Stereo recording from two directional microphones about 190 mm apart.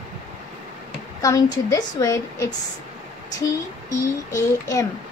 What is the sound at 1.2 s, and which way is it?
A child's voice, 20° left (ahead or behind).